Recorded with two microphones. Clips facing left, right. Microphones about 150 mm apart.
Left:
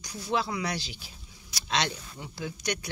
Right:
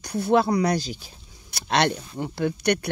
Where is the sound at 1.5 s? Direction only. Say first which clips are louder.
Right 8 dB; 60° right (ahead or behind).